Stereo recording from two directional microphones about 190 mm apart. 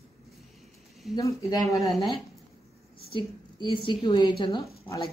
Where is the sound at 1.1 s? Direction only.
15° left (ahead or behind).